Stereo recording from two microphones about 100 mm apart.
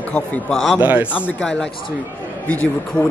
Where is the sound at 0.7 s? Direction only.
20° right (ahead or behind).